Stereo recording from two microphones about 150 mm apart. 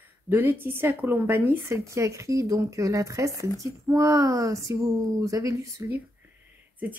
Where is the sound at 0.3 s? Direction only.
15° right (ahead or behind).